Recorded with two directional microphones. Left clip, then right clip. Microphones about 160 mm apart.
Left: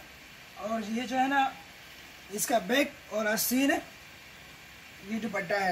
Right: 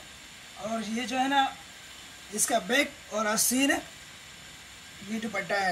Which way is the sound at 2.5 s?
20° left (ahead or behind).